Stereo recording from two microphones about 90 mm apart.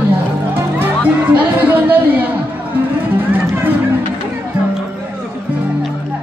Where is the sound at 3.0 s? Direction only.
20° right (ahead or behind).